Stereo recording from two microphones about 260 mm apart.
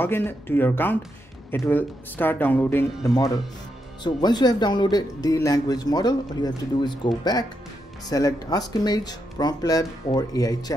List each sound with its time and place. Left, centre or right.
0.0 s a man's voice: centre
8.1 s a man's voice: centre